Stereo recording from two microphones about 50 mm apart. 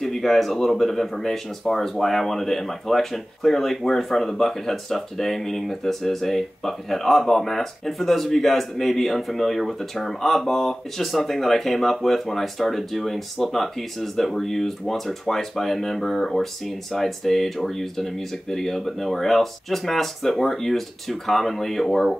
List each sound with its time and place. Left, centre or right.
0.0 s speech: centre